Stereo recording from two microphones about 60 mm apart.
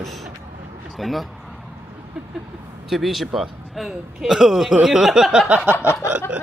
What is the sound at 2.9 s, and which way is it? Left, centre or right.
Speech, centre.